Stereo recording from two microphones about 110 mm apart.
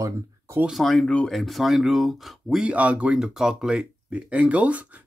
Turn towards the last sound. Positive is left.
turn(degrees=-15)  # may be behind; listen again after turning